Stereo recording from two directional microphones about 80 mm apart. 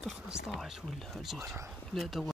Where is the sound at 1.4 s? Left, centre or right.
Right.